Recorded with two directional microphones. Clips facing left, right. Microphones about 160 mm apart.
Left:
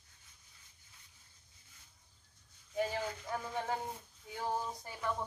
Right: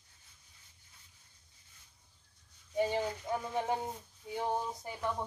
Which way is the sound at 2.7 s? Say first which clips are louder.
Right 4 dB; 20° right (ahead or behind).